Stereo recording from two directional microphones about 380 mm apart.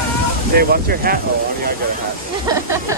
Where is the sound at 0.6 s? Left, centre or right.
Right.